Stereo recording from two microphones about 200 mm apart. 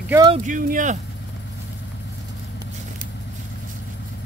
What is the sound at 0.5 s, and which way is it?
Speech, 40° right (ahead or behind).